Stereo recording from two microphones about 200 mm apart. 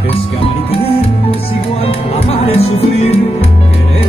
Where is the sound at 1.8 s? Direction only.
30° left (ahead or behind).